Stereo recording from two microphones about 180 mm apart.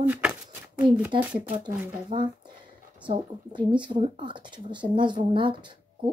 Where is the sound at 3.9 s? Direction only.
25° right (ahead or behind).